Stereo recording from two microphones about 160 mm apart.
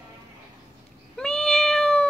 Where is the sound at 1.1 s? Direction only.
Centre (ahead or behind).